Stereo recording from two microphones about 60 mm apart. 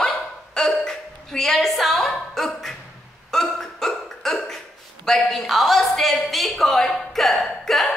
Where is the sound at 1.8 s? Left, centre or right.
Centre.